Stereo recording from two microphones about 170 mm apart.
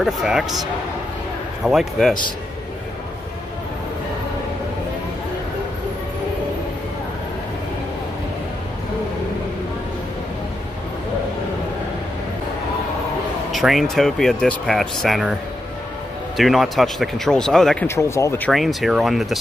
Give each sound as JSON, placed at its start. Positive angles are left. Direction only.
{"t": 0.0, "sound": "speech", "side_deg": 0}
{"t": 1.6, "sound": "speech", "side_deg": 0}
{"t": 13.5, "sound": "speech", "side_deg": 0}
{"t": 16.3, "sound": "speech", "side_deg": 0}
{"t": 17.8, "sound": "speech", "side_deg": 15}
{"t": 18.5, "sound": "speech", "side_deg": 0}